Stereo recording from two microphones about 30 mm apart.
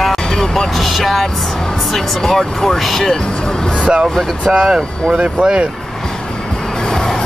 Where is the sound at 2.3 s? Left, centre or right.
Centre.